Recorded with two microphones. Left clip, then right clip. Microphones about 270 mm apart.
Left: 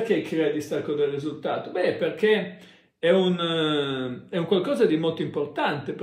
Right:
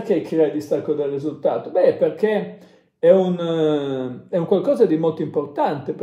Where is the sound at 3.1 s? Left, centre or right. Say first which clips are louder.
Right 6 dB; centre.